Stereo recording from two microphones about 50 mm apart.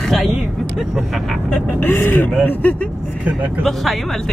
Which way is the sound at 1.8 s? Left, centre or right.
Left.